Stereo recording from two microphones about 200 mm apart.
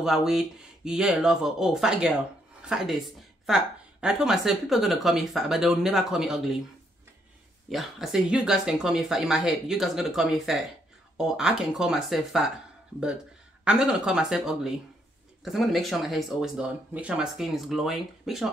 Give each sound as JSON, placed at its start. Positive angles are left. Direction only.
{"t": 0.0, "sound": "a woman's voice", "side_deg": 0}
{"t": 7.7, "sound": "a woman's voice", "side_deg": 0}
{"t": 13.7, "sound": "a woman's voice", "side_deg": -5}